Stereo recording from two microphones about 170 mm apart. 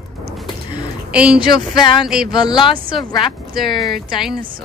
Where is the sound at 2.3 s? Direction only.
25° left (ahead or behind).